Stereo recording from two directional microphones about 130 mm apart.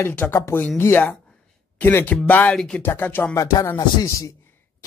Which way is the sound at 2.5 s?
Centre (ahead or behind).